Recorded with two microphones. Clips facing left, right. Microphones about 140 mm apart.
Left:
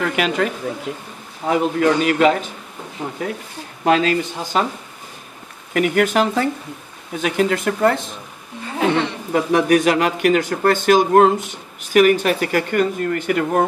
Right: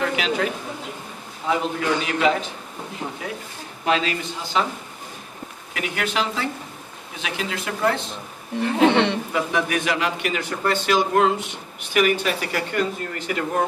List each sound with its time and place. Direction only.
0.0 s a woman's voice: 55° left (ahead or behind)
1.5 s a man's voice: 50° left (ahead or behind)
3.8 s a man's voice: 45° left (ahead or behind)
5.7 s a man's voice: 50° left (ahead or behind)
8.6 s a sound: 75° right (ahead or behind)
9.3 s a man's voice: 45° left (ahead or behind)